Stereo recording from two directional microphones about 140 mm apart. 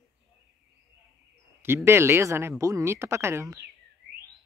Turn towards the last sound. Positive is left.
turn(degrees=-20)  # may be behind; listen again after turning